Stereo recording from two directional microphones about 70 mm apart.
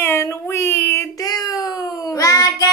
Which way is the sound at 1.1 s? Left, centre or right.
Left.